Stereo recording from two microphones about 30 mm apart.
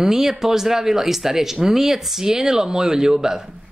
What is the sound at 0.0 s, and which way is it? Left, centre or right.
Speech, centre.